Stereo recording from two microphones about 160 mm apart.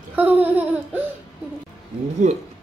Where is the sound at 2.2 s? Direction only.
45° right (ahead or behind).